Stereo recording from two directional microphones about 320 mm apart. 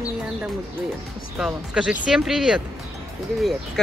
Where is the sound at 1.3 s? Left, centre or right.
Centre.